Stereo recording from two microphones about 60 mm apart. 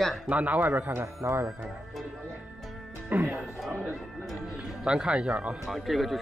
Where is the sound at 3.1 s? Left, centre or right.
Right.